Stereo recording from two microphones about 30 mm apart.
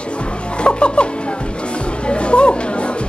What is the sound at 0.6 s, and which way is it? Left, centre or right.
Speech, left.